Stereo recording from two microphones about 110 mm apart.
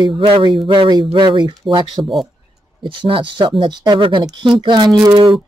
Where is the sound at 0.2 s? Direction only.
50° right (ahead or behind).